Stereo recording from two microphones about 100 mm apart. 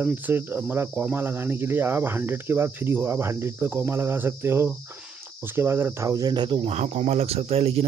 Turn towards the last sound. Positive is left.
turn(degrees=-80)